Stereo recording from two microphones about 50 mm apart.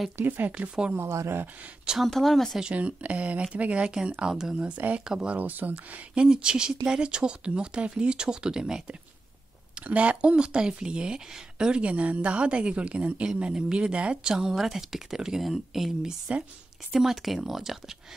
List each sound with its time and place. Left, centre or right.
0.2 s speech: right
0.9 s speech: right
2.0 s speech: centre
2.7 s speech: right
4.2 s speech: centre
4.6 s speech: right
5.0 s speech: centre
5.3 s speech: right
6.2 s speech: centre
9.8 s speech: right
14.3 s speech: centre